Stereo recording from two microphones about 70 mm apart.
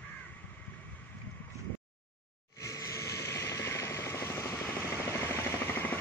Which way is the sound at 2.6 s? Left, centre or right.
Left.